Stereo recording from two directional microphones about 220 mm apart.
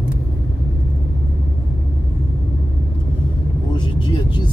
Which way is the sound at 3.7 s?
20° left (ahead or behind).